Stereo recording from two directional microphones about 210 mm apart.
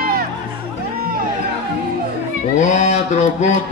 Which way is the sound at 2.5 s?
35° left (ahead or behind).